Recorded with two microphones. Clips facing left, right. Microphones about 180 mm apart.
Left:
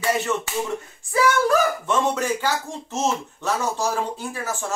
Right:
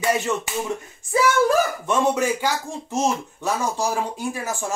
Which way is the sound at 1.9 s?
15° right (ahead or behind).